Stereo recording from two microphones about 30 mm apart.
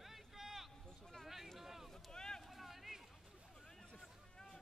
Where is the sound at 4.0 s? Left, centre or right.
Centre.